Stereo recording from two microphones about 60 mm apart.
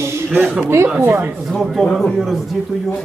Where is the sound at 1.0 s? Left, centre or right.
Right.